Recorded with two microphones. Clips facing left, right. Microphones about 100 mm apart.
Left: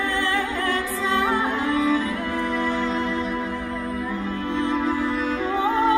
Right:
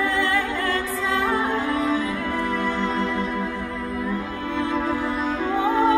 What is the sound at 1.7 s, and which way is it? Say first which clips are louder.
Music: left 1 dB; 30° right (ahead or behind).